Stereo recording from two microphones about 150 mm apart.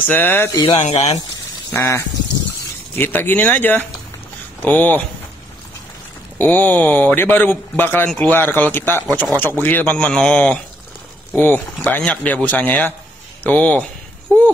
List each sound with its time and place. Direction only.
0.0 s speech: 15° left (ahead or behind)
0.7 s speech: 45° left (ahead or behind)
1.7 s speech: 15° left (ahead or behind)
6.3 s speech: 10° left (ahead or behind)